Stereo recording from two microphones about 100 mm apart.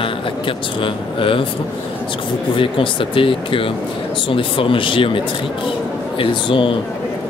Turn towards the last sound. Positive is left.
turn(degrees=60)  # may be behind; listen again after turning